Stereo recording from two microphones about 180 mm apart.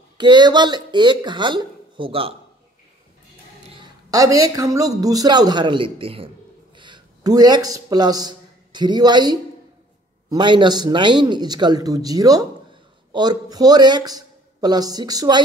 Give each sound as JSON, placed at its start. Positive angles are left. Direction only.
{"t": 0.2, "sound": "speech", "side_deg": -25}
{"t": 3.6, "sound": "a man's voice", "side_deg": -25}